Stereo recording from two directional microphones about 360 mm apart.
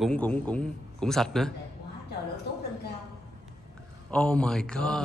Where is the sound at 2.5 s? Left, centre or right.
Left.